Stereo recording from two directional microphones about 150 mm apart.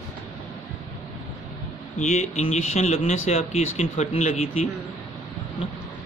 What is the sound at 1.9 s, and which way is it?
Speech, 50° left (ahead or behind).